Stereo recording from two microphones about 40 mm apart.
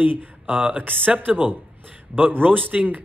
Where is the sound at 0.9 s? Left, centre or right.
Right.